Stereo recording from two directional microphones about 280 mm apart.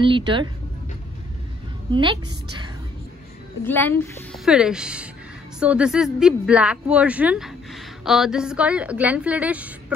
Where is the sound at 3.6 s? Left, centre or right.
Centre.